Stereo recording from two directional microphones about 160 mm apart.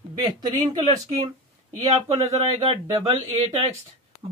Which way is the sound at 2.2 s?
40° right (ahead or behind).